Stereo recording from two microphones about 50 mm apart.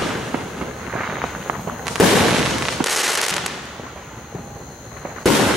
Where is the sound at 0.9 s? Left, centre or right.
Centre.